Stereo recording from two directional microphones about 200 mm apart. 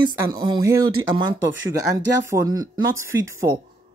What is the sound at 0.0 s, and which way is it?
Speech, 20° right (ahead or behind).